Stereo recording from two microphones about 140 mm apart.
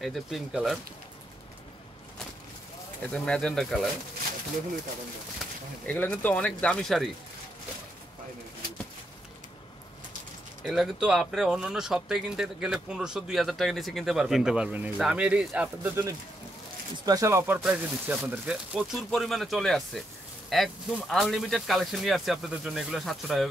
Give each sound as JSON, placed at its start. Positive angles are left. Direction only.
{"t": 0.0, "sound": "speech", "side_deg": 0}
{"t": 3.1, "sound": "speech", "side_deg": 5}
{"t": 5.9, "sound": "speech", "side_deg": 10}
{"t": 10.6, "sound": "speech", "side_deg": 0}
{"t": 17.0, "sound": "speech", "side_deg": -25}